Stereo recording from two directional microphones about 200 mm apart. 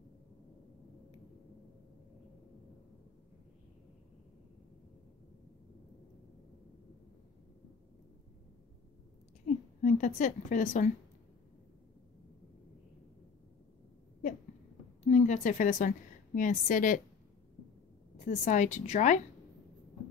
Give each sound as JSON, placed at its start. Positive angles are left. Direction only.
{"t": 9.5, "sound": "a sound", "side_deg": 40}
{"t": 9.8, "sound": "a woman's voice", "side_deg": 40}
{"t": 15.0, "sound": "a woman's voice", "side_deg": 35}
{"t": 18.1, "sound": "a woman's voice", "side_deg": 35}